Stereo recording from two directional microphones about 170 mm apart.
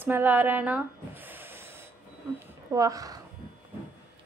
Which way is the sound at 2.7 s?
20° right (ahead or behind).